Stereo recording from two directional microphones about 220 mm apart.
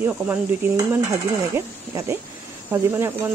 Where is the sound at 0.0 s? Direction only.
10° right (ahead or behind).